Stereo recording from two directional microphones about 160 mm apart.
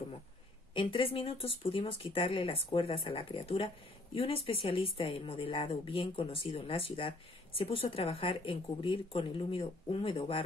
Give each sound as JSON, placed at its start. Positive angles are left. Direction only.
{"t": 0.7, "sound": "speech", "side_deg": 35}